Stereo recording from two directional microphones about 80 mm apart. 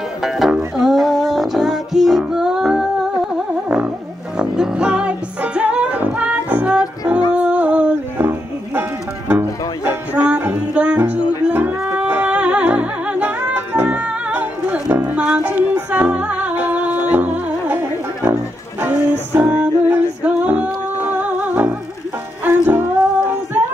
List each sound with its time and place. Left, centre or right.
0.2 s music: centre
3.6 s music: centre
7.3 s humming: centre
8.2 s music: right